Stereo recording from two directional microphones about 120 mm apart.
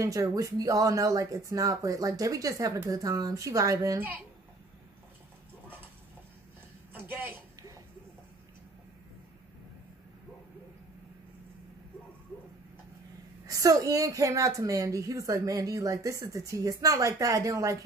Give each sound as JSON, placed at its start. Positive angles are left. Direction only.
{"t": 0.0, "sound": "a woman's voice", "side_deg": -30}
{"t": 6.9, "sound": "a woman's voice", "side_deg": -15}
{"t": 13.5, "sound": "a woman's voice", "side_deg": -30}